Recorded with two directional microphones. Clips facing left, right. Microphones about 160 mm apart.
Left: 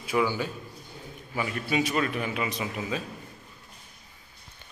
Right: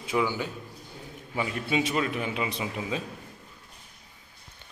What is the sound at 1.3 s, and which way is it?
A man's voice, 20° right (ahead or behind).